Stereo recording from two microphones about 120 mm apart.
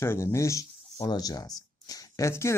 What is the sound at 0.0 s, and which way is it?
Speech, 20° left (ahead or behind).